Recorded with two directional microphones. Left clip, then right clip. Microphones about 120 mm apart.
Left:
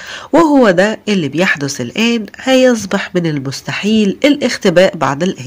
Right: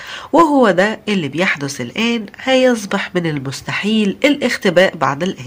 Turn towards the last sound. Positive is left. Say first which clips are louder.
# left 3 dB
turn(degrees=35)  # may be behind; listen again after turning